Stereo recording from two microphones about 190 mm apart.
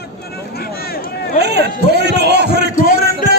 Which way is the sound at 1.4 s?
60° right (ahead or behind).